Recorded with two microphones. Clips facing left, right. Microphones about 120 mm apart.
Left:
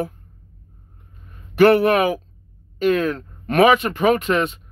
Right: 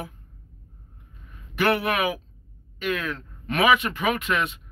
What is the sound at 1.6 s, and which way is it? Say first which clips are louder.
Speech: left 9 dB; 35° left (ahead or behind).